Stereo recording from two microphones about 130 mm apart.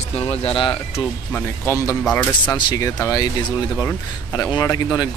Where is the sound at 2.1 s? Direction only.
15° left (ahead or behind).